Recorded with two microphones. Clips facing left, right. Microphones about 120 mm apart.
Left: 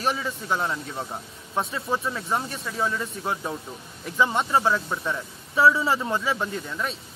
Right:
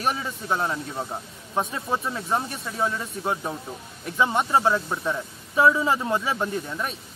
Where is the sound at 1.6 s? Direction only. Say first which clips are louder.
Even; 15° right (ahead or behind).